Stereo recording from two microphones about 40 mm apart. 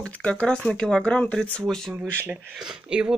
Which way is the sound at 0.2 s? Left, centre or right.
Left.